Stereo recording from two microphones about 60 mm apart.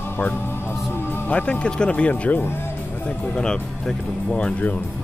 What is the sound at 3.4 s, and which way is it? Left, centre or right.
Speech, centre.